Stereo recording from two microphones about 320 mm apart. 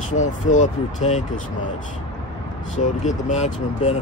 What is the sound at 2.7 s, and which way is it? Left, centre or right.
Speech, left.